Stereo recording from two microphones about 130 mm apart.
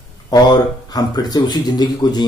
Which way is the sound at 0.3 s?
30° left (ahead or behind).